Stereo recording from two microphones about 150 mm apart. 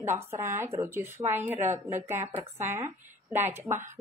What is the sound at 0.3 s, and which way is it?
Speech, 20° right (ahead or behind).